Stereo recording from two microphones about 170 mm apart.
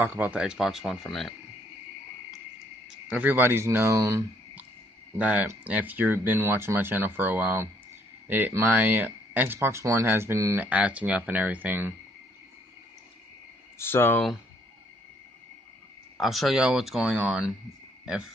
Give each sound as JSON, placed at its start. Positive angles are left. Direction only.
{"t": 0.0, "sound": "speech", "side_deg": -10}
{"t": 3.1, "sound": "speech", "side_deg": -10}
{"t": 13.7, "sound": "speech", "side_deg": 15}
{"t": 16.2, "sound": "speech", "side_deg": 0}